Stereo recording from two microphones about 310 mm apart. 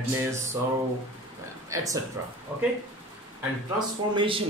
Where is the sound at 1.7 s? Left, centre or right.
Centre.